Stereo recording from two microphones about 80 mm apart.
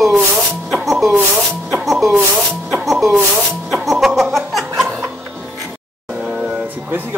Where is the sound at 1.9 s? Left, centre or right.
Centre.